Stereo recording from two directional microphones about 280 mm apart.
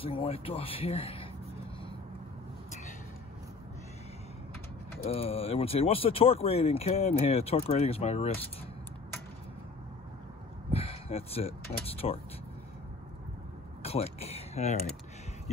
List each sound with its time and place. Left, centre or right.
0.0 s speech: centre
5.0 s speech: left
10.7 s speech: left
13.8 s a sound: left